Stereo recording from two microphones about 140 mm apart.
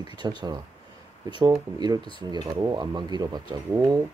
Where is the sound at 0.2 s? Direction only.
30° right (ahead or behind).